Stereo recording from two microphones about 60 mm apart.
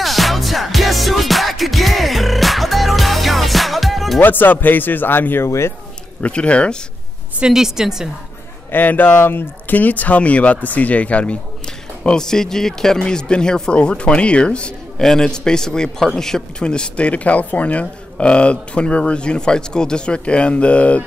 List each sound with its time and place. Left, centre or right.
0.0 s music: centre
4.2 s speech: left
6.2 s speech: centre
7.3 s a woman's voice: centre
8.7 s speech: left
12.0 s speech: centre